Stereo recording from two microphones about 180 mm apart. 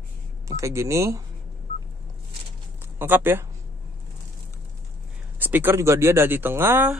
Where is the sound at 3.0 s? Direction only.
10° right (ahead or behind).